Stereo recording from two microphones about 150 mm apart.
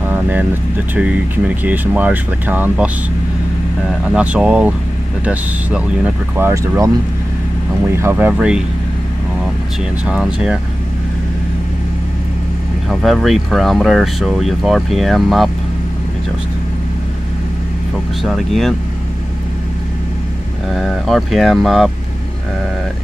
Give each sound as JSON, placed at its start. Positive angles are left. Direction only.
{"t": 0.0, "sound": "vehicle", "side_deg": -10}
{"t": 0.9, "sound": "speech", "side_deg": -10}
{"t": 4.1, "sound": "speech", "side_deg": -5}
{"t": 7.9, "sound": "speech", "side_deg": -15}
{"t": 10.0, "sound": "speech", "side_deg": -5}
{"t": 13.0, "sound": "speech", "side_deg": 0}
{"t": 18.2, "sound": "speech", "side_deg": 0}
{"t": 20.7, "sound": "speech", "side_deg": 0}